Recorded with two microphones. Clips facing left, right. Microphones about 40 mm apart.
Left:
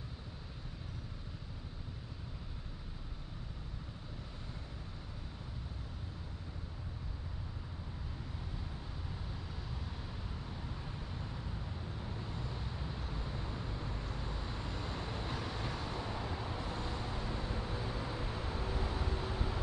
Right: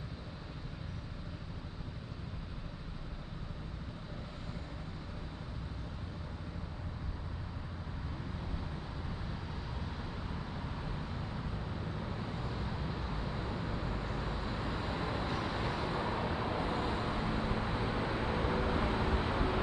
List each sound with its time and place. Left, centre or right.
12.1 s vehicle: right